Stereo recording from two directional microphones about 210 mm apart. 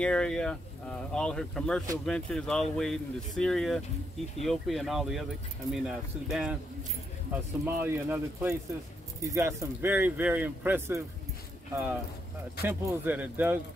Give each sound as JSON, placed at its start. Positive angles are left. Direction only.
{"t": 0.0, "sound": "speech", "side_deg": 5}
{"t": 7.6, "sound": "speech", "side_deg": -10}